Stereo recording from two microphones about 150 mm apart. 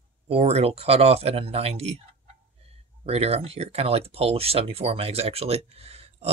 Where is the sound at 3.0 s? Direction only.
45° right (ahead or behind).